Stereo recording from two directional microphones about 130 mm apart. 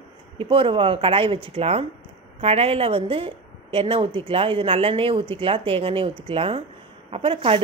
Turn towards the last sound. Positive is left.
turn(degrees=-45)  # may be behind; listen again after turning